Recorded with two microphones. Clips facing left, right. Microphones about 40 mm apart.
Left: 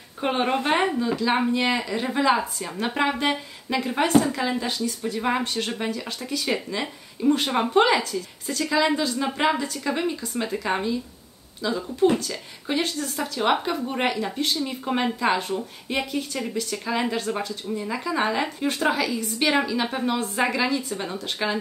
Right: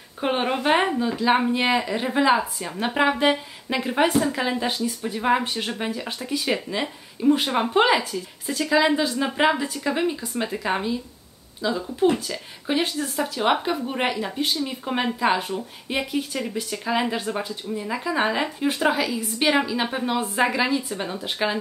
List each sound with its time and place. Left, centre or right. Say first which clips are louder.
0.2 s speech: right 1 dB; centre
7.2 s speech: right 1 dB; centre
17.6 s speech: right 1 dB; centre